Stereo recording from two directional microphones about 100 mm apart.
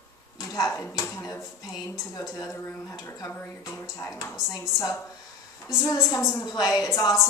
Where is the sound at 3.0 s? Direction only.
30° left (ahead or behind).